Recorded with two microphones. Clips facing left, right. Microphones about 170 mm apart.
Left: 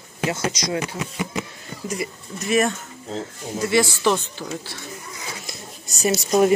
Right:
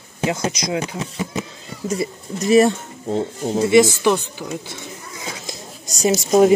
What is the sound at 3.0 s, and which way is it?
Speech, 60° right (ahead or behind).